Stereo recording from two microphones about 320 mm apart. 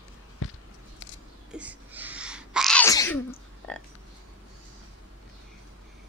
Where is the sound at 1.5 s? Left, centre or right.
Centre.